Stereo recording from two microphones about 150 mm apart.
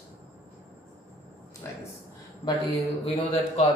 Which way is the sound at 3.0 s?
45° left (ahead or behind).